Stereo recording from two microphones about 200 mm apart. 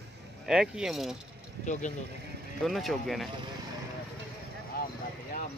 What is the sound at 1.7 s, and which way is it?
Speech, 35° left (ahead or behind).